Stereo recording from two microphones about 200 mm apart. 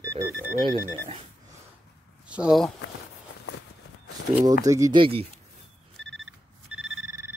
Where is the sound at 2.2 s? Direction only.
5° right (ahead or behind).